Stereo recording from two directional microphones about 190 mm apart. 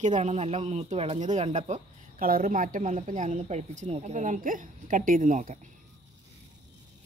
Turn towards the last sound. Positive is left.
turn(degrees=-45)  # may be behind; listen again after turning